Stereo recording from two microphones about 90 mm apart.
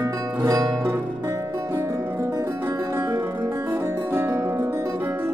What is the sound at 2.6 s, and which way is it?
Music, 30° right (ahead or behind).